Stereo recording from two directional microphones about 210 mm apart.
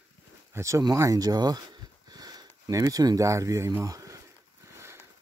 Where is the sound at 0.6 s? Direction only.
15° right (ahead or behind).